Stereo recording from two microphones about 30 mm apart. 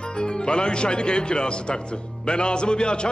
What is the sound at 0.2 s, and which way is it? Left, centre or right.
Speech, left.